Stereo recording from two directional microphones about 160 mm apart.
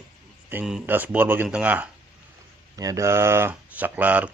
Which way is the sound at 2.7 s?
20° right (ahead or behind).